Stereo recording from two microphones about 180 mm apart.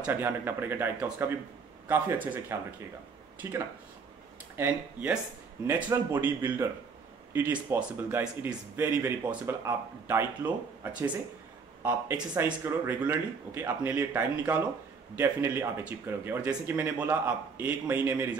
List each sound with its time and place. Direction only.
0.0 s speech: 10° right (ahead or behind)
12.4 s speech: 10° right (ahead or behind)